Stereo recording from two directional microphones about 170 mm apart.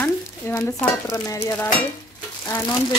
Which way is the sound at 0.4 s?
15° left (ahead or behind).